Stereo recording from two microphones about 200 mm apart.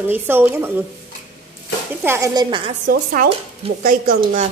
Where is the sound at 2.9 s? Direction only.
45° right (ahead or behind).